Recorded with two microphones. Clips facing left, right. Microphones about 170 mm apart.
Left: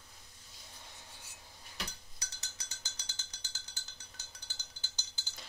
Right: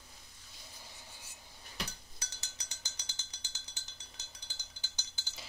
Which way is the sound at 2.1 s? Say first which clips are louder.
Right 1 dB; 20° right (ahead or behind).